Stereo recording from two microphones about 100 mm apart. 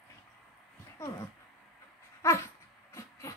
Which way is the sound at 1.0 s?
30° left (ahead or behind).